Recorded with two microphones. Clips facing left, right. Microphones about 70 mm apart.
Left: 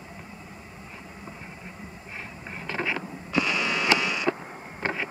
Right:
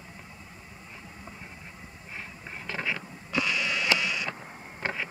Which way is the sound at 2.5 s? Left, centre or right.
Left.